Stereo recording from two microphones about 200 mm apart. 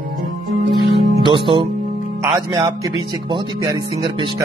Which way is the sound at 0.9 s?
25° right (ahead or behind).